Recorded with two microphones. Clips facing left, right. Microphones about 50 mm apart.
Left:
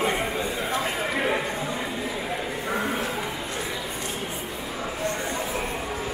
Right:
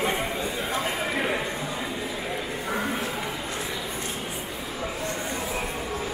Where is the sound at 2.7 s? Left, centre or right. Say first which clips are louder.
Left 1 dB; centre.